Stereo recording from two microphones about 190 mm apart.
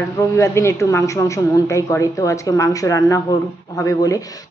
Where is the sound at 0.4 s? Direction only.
15° left (ahead or behind).